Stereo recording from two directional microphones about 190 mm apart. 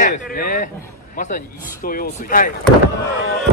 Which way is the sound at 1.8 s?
50° left (ahead or behind).